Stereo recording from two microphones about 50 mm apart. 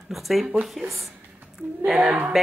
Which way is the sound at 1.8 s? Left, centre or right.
Centre.